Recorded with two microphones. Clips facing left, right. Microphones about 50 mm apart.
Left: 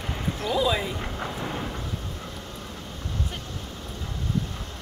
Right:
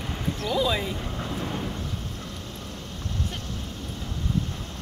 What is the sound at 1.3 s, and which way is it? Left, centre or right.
Vehicle, centre.